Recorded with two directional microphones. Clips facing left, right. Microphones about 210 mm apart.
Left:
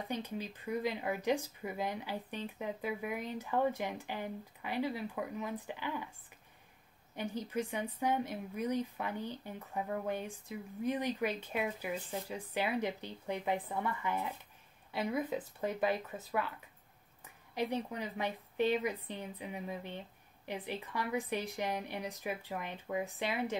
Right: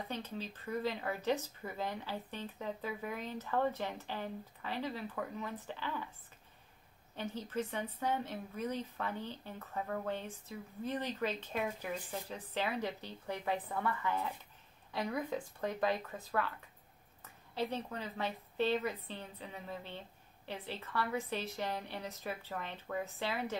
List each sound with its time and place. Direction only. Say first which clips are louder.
0.1 s speech: left 3 dB; 15° left (ahead or behind)
7.2 s speech: left 2 dB; 10° left (ahead or behind)